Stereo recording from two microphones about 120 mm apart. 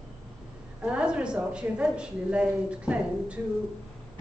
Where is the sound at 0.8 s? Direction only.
10° right (ahead or behind).